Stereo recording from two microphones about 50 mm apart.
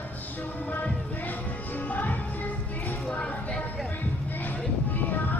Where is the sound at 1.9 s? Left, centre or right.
Left.